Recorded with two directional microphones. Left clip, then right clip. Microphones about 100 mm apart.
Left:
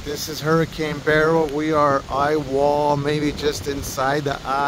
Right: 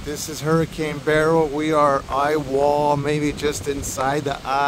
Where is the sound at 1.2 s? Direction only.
30° right (ahead or behind).